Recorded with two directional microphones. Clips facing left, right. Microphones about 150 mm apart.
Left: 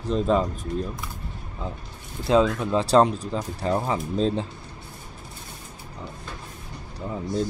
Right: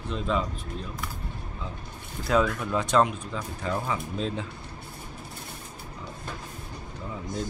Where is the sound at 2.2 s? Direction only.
25° left (ahead or behind).